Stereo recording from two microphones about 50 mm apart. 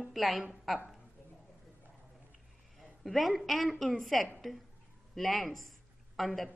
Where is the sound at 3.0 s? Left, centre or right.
Centre.